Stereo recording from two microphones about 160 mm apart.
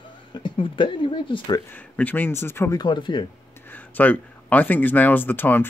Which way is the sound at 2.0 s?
10° left (ahead or behind).